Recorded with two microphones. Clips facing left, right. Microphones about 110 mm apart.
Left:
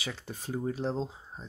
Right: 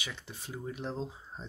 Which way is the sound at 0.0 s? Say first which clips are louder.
Left 5 dB; 40° left (ahead or behind).